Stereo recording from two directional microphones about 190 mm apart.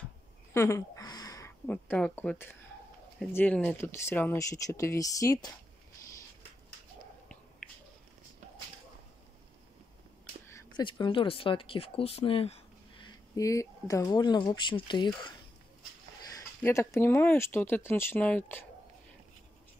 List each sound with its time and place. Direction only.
0.5 s a sound: 15° left (ahead or behind)
3.2 s speech: 5° left (ahead or behind)
7.6 s a sound: 5° left (ahead or behind)
10.5 s speech: 25° left (ahead or behind)
13.0 s speech: 15° left (ahead or behind)
16.3 s speech: 15° left (ahead or behind)